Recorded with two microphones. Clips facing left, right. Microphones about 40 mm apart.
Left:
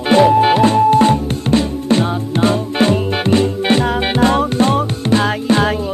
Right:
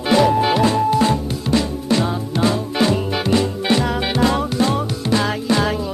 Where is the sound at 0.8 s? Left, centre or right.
Left.